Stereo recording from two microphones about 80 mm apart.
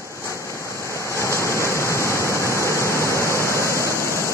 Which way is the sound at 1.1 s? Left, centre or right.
Left.